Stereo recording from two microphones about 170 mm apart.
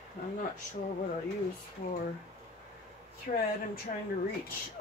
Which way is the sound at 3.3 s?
55° left (ahead or behind).